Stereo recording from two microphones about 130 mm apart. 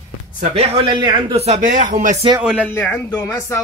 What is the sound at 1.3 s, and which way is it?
Speech, 55° right (ahead or behind).